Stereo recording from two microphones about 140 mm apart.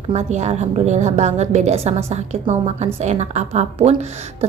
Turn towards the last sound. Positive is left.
turn(degrees=-50)  # may be behind; listen again after turning